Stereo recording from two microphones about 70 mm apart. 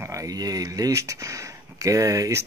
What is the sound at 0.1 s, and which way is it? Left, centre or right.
Speech, right.